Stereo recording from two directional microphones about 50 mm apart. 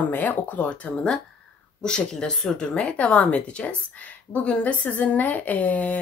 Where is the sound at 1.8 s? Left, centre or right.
Centre; by 6.0 s left.